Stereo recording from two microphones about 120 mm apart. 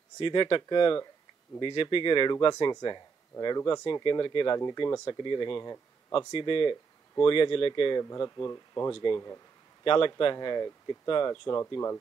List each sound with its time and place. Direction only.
0.2 s speech: 40° left (ahead or behind)
6.3 s speech: 45° left (ahead or behind)
8.0 s speech: 30° left (ahead or behind)
9.8 s speech: 45° left (ahead or behind); by 12.0 s 25° left (ahead or behind)